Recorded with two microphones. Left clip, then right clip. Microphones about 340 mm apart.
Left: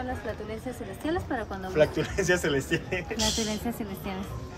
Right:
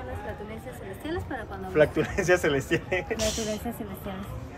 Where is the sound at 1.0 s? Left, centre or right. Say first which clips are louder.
Left 4 dB; left.